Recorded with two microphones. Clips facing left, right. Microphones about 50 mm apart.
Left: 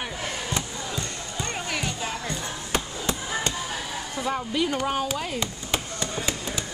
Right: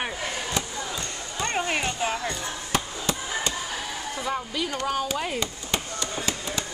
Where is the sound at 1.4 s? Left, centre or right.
Right.